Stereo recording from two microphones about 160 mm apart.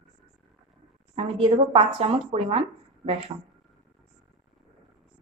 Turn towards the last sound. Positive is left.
turn(degrees=-40)  # may be behind; listen again after turning